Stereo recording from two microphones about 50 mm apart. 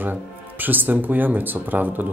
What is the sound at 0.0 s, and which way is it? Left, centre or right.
Speech, right.